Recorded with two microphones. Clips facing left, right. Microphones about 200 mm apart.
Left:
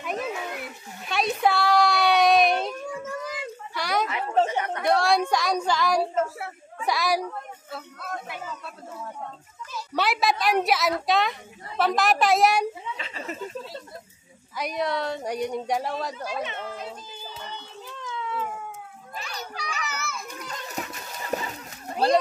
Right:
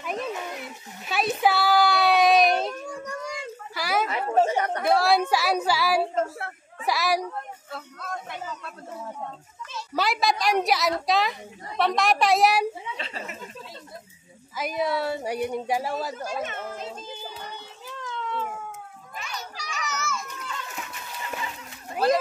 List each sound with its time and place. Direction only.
0.0 s a sound: centre (ahead or behind)
4.6 s chatter: 40° right (ahead or behind)
4.8 s a woman's voice: 5° right (ahead or behind)
6.1 s a woman's voice: 5° left (ahead or behind)
9.9 s a woman's voice: centre (ahead or behind)
12.9 s speech: 35° right (ahead or behind)
14.6 s a woman's voice: 5° right (ahead or behind)
16.8 s child singing: 20° right (ahead or behind)
17.9 s baby cry: centre (ahead or behind)
19.1 s children playing: 35° left (ahead or behind)
19.5 s children playing: 60° left (ahead or behind)
20.4 s a sound: 40° left (ahead or behind)